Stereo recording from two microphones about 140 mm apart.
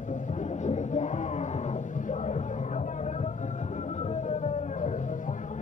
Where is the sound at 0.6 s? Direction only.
60° left (ahead or behind).